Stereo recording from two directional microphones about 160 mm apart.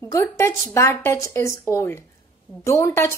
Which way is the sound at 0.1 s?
20° left (ahead or behind).